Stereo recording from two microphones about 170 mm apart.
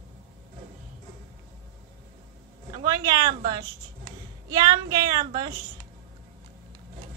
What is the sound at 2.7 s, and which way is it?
Speech, 25° right (ahead or behind).